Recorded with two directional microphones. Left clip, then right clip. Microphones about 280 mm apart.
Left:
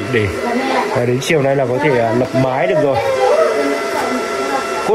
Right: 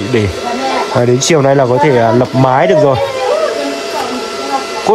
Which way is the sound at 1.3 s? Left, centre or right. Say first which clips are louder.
Right 6 dB; right.